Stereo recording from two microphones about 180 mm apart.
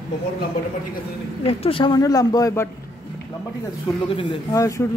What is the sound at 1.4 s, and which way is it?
Speech, 30° left (ahead or behind).